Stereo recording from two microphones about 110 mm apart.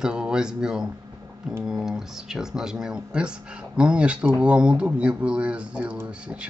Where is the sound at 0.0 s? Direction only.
5° right (ahead or behind).